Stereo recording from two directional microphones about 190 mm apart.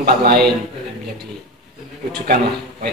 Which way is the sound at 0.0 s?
55° right (ahead or behind).